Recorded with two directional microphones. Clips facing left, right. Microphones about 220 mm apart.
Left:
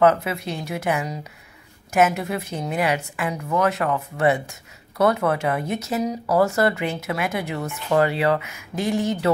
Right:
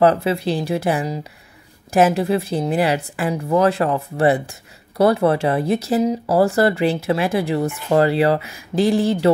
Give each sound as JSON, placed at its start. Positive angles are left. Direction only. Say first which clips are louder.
{"t": 0.0, "sound": "a woman's voice", "louder": "right 3 dB", "side_deg": -30}